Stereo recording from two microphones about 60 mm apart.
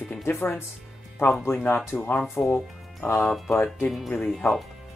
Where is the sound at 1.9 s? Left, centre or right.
Left.